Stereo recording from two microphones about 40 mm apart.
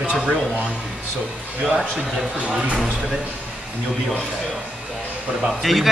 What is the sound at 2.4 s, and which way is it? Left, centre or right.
Speech, right.